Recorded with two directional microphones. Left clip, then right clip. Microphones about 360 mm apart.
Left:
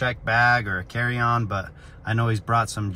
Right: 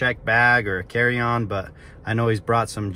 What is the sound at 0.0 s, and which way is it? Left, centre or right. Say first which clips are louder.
Speech: right 2 dB; left.